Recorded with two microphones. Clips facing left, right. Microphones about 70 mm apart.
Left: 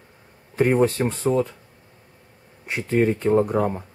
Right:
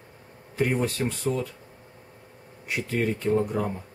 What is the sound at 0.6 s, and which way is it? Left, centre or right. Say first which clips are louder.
Speech: left 7 dB; left.